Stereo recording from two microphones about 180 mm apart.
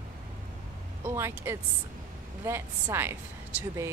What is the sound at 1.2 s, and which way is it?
Speech, 15° right (ahead or behind).